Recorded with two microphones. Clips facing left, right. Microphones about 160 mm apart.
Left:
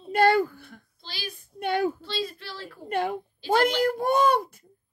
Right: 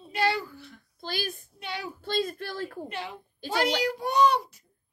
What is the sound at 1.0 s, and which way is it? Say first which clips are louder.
Speech: right 6 dB; 50° right (ahead or behind).